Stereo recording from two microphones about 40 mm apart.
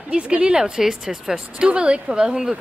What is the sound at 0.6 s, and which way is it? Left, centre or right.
A woman's voice, centre.